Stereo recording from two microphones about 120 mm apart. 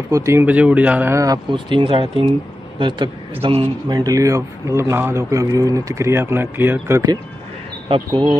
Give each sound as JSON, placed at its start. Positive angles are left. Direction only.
{"t": 0.1, "sound": "speech", "side_deg": -25}
{"t": 1.1, "sound": "a man's voice", "side_deg": -30}
{"t": 1.5, "sound": "speech", "side_deg": -40}
{"t": 3.9, "sound": "a man's voice", "side_deg": -30}
{"t": 8.1, "sound": "speech", "side_deg": -40}